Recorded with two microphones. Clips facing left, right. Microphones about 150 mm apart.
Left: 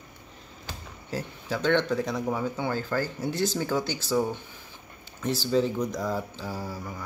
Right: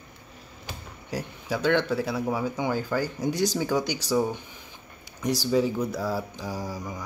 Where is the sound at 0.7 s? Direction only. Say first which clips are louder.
Right 1 dB; 15° right (ahead or behind).